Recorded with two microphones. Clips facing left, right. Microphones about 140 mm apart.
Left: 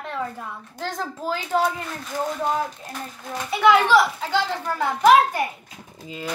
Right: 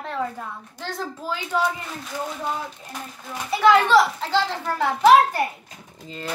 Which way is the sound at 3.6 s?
5° left (ahead or behind).